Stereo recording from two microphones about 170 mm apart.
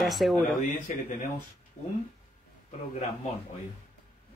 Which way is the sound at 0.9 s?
50° left (ahead or behind).